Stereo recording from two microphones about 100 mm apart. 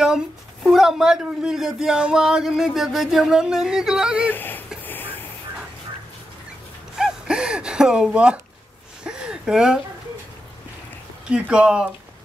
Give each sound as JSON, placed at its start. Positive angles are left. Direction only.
{"t": 0.7, "sound": "speech", "side_deg": -5}
{"t": 4.3, "sound": "speech", "side_deg": 20}
{"t": 4.8, "sound": "vehicle", "side_deg": 20}
{"t": 7.0, "sound": "gasp", "side_deg": -5}
{"t": 9.0, "sound": "a sound", "side_deg": -10}
{"t": 11.2, "sound": "speech", "side_deg": -10}